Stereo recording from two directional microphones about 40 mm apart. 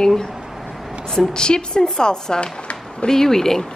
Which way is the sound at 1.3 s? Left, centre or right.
Centre.